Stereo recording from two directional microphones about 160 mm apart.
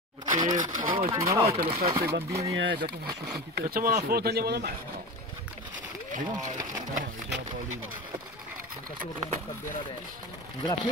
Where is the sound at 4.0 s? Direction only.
85° right.